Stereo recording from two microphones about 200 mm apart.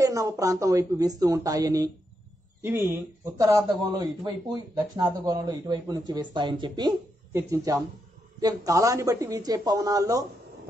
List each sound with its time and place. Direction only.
0.0 s a woman's voice: 15° right (ahead or behind)